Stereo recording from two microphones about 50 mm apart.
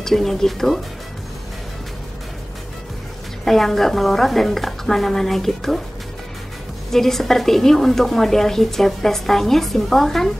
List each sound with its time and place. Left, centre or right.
0.0 s a woman's voice: centre
3.4 s a woman's voice: centre
6.9 s a woman's voice: centre